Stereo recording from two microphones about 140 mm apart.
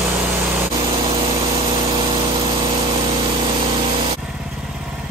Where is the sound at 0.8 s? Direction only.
40° right (ahead or behind).